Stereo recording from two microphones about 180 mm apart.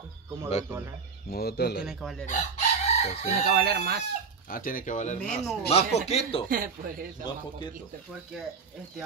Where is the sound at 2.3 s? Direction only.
40° left (ahead or behind).